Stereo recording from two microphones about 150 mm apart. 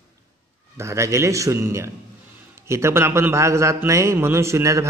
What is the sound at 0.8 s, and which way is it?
A man's voice, 20° right (ahead or behind).